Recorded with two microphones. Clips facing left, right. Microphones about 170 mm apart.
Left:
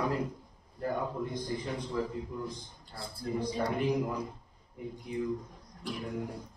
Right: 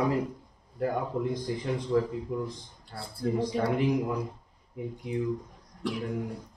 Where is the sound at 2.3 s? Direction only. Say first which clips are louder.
Right 6 dB; 90° right.